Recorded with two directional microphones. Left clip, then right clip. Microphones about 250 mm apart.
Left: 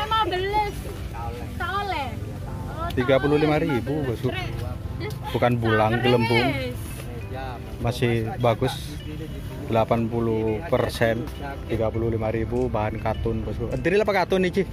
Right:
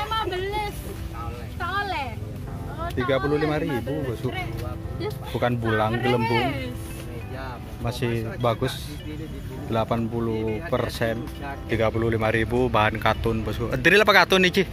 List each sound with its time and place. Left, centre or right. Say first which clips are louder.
0.1 s vehicle: left 4 dB; centre
1.6 s a sound: even; centre
2.8 s speech: left 3 dB; centre
5.4 s speech: left 3 dB; centre
6.2 s speech: left 2 dB; centre
7.8 s speech: left 3 dB; centre